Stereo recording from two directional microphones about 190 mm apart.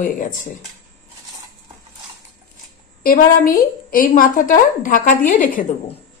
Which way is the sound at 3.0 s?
50° left (ahead or behind).